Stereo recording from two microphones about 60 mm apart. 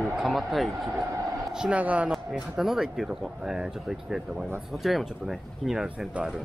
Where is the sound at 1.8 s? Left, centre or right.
Right.